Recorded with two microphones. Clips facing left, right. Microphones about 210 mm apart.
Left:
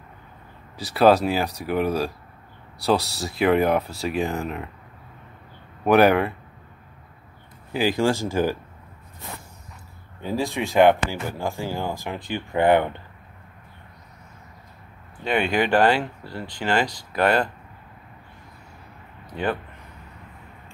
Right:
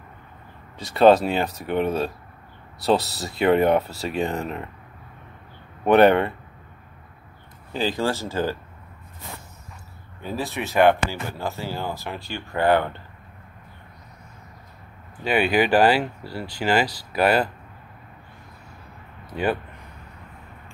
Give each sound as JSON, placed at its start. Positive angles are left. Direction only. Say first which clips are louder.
{"t": 0.7, "sound": "speech", "louder": "right 2 dB", "side_deg": 0}
{"t": 5.9, "sound": "speech", "louder": "right 1 dB", "side_deg": 5}
{"t": 7.7, "sound": "speech", "louder": "left 3 dB", "side_deg": 10}
{"t": 10.2, "sound": "speech", "louder": "left 3 dB", "side_deg": 15}
{"t": 15.2, "sound": "speech", "louder": "right 2 dB", "side_deg": -5}
{"t": 19.3, "sound": "speech", "louder": "right 2 dB", "side_deg": -10}